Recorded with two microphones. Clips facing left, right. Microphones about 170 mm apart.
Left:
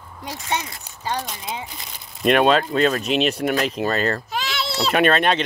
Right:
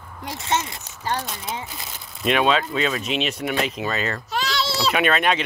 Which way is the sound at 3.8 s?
40° left (ahead or behind).